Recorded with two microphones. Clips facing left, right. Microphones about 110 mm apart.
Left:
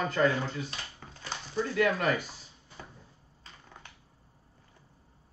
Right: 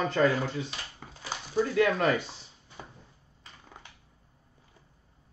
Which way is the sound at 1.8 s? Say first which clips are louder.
Right 1 dB; 30° right (ahead or behind).